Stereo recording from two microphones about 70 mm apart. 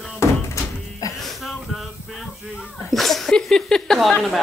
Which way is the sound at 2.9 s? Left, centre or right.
Centre.